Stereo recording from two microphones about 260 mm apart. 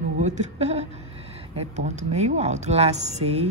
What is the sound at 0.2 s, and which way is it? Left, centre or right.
A woman's voice, right.